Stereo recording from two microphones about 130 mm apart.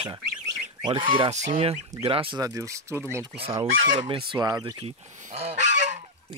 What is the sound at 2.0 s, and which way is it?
Goose, 45° right (ahead or behind).